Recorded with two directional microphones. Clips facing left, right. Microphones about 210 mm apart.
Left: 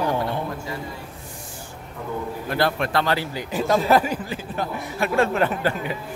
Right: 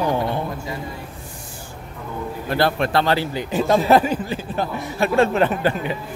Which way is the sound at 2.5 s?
30° right (ahead or behind).